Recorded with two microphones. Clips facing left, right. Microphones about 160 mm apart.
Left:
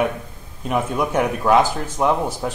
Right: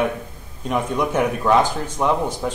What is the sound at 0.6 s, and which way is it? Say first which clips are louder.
Speech: even; 5° left (ahead or behind).